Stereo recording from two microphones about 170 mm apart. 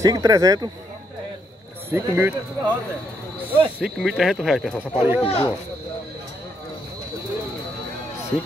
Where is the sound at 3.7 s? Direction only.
5° right (ahead or behind).